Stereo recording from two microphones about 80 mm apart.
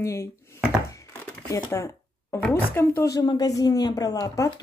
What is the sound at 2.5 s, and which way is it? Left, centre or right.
Speech, left.